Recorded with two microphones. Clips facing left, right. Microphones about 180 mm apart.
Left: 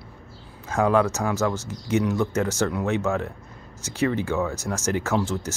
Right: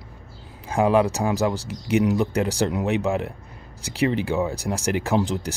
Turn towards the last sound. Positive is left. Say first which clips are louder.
# right 2 dB
turn(degrees=-15)  # may be behind; listen again after turning